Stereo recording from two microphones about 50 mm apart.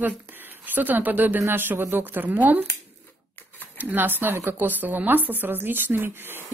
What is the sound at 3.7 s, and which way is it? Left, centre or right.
Speech, right.